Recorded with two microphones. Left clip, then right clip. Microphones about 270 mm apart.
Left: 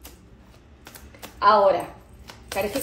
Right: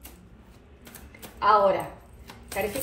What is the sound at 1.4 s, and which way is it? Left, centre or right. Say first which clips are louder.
Speech: left 3 dB; left.